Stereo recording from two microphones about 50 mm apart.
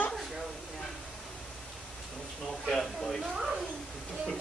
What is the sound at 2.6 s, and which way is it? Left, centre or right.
Speech, centre.